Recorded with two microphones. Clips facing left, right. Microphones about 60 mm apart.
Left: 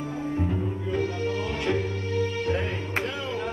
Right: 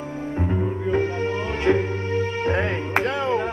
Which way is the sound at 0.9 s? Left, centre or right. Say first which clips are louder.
Right 4 dB; right.